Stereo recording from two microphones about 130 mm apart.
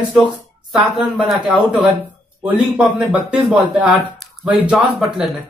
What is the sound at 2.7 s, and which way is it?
A man's voice, 5° right (ahead or behind).